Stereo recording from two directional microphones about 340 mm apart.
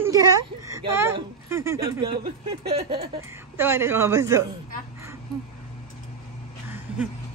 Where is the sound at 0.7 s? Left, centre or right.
Centre.